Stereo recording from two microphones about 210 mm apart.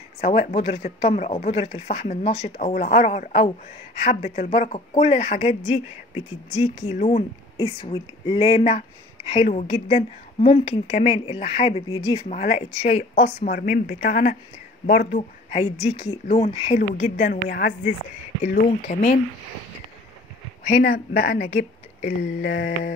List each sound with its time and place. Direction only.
0.2 s a woman's voice: 30° left (ahead or behind)
5.7 s speech: 10° right (ahead or behind)
6.7 s a woman's voice: 30° left (ahead or behind)
11.0 s a woman's voice: 35° left (ahead or behind)
11.2 s speech: 25° left (ahead or behind)
12.3 s a woman's voice: 35° left (ahead or behind)
15.1 s a woman's voice: 30° left (ahead or behind)
20.8 s speech: 45° left (ahead or behind)